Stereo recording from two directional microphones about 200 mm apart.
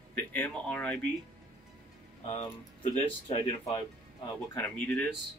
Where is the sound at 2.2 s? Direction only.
25° left (ahead or behind).